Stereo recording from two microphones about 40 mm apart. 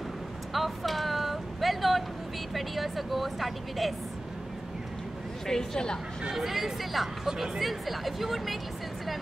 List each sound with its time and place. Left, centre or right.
0.5 s vehicle: centre
2.5 s a woman's voice: centre
5.5 s a woman's voice: centre
6.3 s speech: centre